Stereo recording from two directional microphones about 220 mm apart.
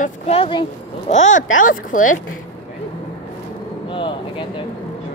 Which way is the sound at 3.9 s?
25° left (ahead or behind).